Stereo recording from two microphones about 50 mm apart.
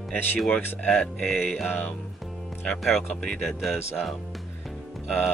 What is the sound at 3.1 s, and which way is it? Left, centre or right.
Speech, left.